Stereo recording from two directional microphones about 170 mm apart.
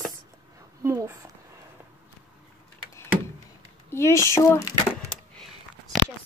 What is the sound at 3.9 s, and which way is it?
Speech, 15° left (ahead or behind).